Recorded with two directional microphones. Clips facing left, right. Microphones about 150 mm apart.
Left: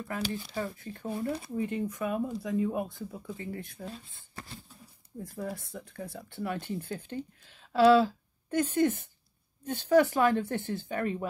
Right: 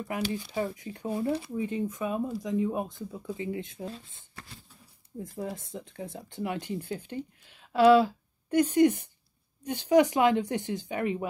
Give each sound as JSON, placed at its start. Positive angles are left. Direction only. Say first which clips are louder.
{"t": 0.3, "sound": "speech", "louder": "right 3 dB", "side_deg": -15}
{"t": 5.2, "sound": "a woman's voice", "louder": "right 1 dB", "side_deg": -20}